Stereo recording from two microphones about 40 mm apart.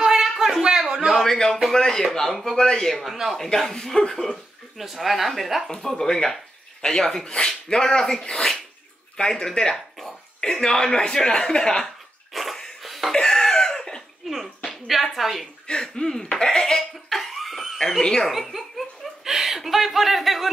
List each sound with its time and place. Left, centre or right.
0.0 s a sound: centre
1.2 s speech: centre
4.7 s speech: centre
5.7 s speech: centre
12.3 s a sound: centre
12.8 s laughter: centre
13.1 s cough: centre
14.3 s a sound: centre
15.1 s speech: centre
15.6 s speech: centre
17.1 s cough: centre
17.7 s speech: centre
18.2 s speech: centre